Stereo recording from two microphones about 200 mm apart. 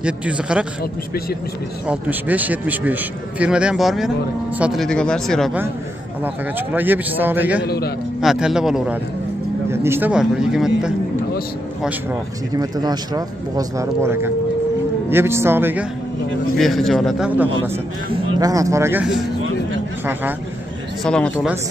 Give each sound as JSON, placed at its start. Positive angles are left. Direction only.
{"t": 0.0, "sound": "a man's voice", "side_deg": -5}
{"t": 1.9, "sound": "a man's voice", "side_deg": -10}
{"t": 6.2, "sound": "a man's voice", "side_deg": -10}
{"t": 7.6, "sound": "a man's voice", "side_deg": 55}
{"t": 8.2, "sound": "speech", "side_deg": 0}
{"t": 12.5, "sound": "a man's voice", "side_deg": -20}
{"t": 16.5, "sound": "speech", "side_deg": 0}
{"t": 18.4, "sound": "a man's voice", "side_deg": -15}
{"t": 21.0, "sound": "speech", "side_deg": 5}